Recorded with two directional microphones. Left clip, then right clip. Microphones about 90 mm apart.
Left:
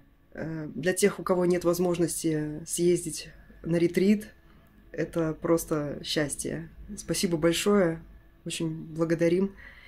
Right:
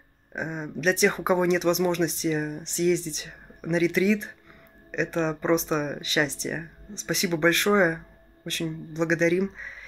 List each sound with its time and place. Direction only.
0.3 s speech: 20° left (ahead or behind)